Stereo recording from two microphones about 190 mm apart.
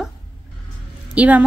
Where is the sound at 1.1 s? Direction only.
5° right (ahead or behind).